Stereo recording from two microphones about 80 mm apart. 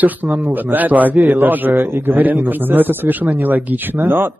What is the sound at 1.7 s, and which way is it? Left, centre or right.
Speech, right.